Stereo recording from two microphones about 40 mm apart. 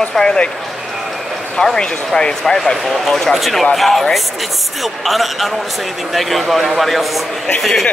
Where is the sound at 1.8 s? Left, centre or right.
Centre.